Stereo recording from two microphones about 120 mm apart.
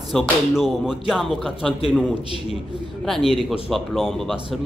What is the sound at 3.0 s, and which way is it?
Speech, centre (ahead or behind).